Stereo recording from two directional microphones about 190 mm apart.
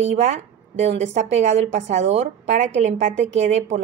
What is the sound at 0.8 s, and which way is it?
A woman's voice, 35° right (ahead or behind).